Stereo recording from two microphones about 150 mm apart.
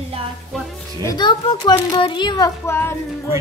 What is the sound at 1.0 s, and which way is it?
A child's voice, 30° left (ahead or behind).